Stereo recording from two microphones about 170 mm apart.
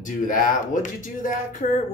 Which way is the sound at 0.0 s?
50° left (ahead or behind).